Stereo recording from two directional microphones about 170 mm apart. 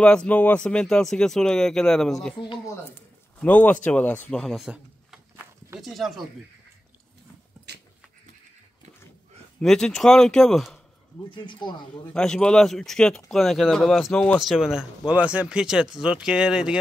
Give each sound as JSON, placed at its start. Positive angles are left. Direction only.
{"t": 0.0, "sound": "speech", "side_deg": 5}
{"t": 3.3, "sound": "speech", "side_deg": 10}
{"t": 9.6, "sound": "speech", "side_deg": 5}
{"t": 11.2, "sound": "speech", "side_deg": 25}
{"t": 12.1, "sound": "speech", "side_deg": 5}